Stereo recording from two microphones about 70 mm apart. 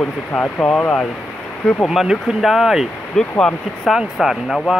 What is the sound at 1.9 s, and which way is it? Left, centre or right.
Speech, centre.